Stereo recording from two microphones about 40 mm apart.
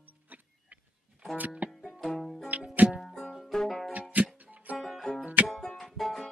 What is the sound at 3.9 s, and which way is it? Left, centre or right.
Music, right.